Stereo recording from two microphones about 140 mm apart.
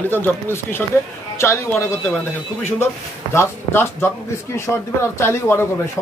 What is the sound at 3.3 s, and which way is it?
A man's voice, 15° left (ahead or behind).